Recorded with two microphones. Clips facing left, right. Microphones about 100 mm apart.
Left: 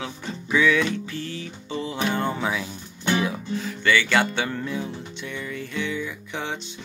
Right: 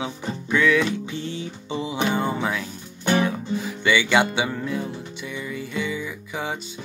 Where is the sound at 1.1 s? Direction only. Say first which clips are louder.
Right 2 dB; 25° right (ahead or behind).